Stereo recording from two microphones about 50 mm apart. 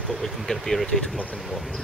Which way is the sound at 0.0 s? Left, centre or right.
Centre.